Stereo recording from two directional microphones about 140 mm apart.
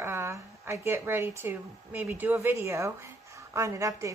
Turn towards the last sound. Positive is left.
turn(degrees=-20)  # may be behind; listen again after turning